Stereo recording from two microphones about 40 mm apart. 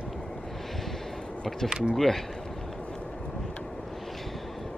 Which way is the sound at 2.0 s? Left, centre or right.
Centre.